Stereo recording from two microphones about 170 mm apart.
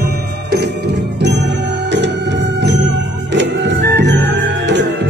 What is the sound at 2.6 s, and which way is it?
Music, 90° right.